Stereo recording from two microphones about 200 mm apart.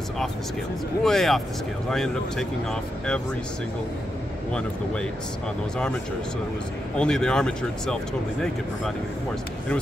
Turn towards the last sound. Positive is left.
turn(degrees=5)  # may be behind; listen again after turning